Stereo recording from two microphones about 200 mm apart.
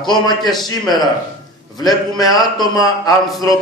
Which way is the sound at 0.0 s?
20° left (ahead or behind).